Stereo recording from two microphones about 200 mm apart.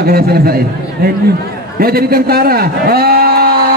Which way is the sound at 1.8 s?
50° right (ahead or behind).